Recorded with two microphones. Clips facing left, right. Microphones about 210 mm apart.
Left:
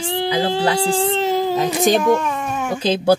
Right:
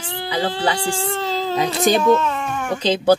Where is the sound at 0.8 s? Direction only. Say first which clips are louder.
Left 5 dB; 20° left (ahead or behind).